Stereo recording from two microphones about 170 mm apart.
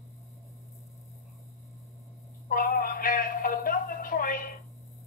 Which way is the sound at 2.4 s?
55° left (ahead or behind).